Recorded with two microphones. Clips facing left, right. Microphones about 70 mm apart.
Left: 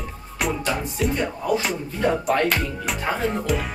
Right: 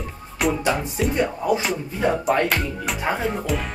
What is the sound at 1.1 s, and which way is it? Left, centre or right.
Music, centre.